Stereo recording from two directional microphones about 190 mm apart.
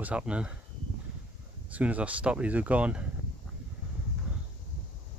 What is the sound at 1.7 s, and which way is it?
Speech, 10° right (ahead or behind).